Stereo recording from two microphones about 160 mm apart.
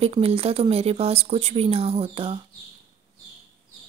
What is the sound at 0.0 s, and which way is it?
Speech, 35° right (ahead or behind).